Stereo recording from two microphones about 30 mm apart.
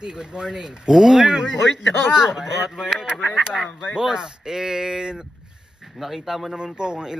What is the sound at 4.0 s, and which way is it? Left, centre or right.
A man's voice, right.